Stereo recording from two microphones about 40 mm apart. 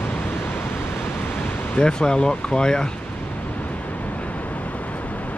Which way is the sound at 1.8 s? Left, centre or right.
Left.